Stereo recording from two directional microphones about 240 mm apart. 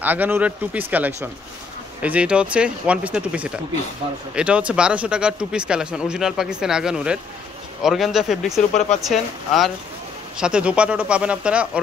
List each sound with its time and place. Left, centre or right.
0.0 s speech: centre
8.7 s speech: left
9.0 s speech: centre